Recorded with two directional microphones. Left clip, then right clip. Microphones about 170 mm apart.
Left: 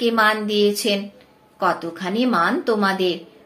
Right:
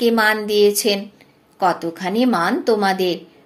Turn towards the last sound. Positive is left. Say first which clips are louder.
# right 2 dB
turn(degrees=-40)  # may be behind; listen again after turning